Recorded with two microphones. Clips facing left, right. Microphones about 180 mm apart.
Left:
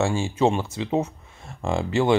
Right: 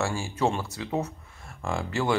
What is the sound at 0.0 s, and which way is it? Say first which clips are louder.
Speech: left 6 dB; 25° left (ahead or behind).